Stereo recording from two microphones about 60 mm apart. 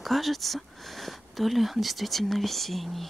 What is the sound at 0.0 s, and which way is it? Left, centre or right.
Speech, centre.